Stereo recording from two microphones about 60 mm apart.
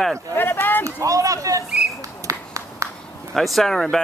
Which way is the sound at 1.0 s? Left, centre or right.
Right.